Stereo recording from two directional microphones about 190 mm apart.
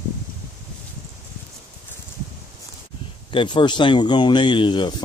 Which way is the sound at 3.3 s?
25° left (ahead or behind).